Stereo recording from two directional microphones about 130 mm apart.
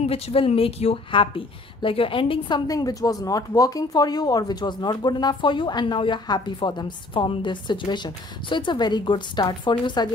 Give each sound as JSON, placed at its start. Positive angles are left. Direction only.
{"t": 0.0, "sound": "a woman's voice", "side_deg": 50}